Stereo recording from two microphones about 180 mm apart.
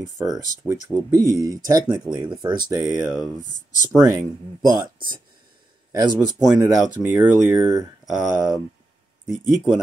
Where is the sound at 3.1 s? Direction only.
20° left (ahead or behind).